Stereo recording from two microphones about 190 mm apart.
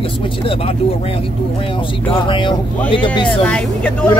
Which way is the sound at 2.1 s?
25° left (ahead or behind).